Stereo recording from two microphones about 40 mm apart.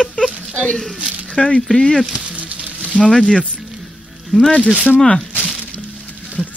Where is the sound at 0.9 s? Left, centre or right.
Right.